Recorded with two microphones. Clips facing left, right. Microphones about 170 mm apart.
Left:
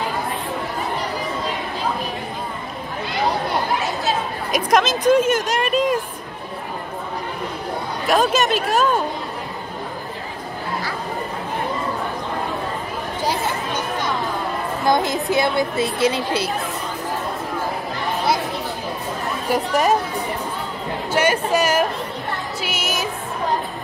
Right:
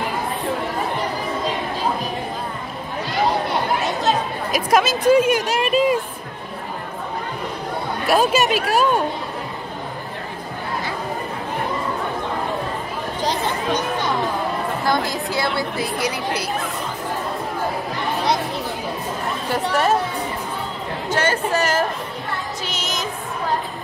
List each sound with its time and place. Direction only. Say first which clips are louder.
4.5 s speech: even; 5° right (ahead or behind)
8.1 s speech: even; 10° right (ahead or behind)
14.9 s a woman's voice: left 5 dB; 20° left (ahead or behind)
19.5 s speech: left 1 dB; 15° left (ahead or behind)
21.1 s speech: left 2 dB; 10° left (ahead or behind)
22.6 s music: left 2 dB; 10° left (ahead or behind)